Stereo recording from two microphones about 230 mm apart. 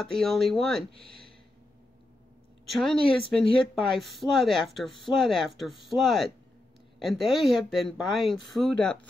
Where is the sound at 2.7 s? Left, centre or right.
Centre.